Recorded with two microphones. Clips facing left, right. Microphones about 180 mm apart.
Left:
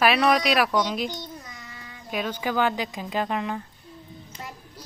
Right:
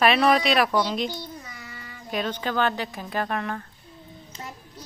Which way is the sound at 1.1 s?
10° right (ahead or behind).